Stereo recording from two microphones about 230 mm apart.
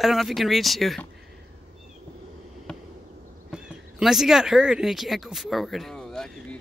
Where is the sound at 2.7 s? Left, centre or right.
Centre.